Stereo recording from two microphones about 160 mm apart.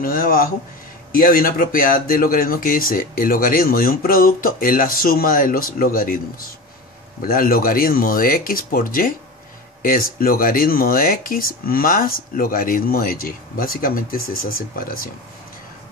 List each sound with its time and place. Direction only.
0.0 s speech: 65° left (ahead or behind)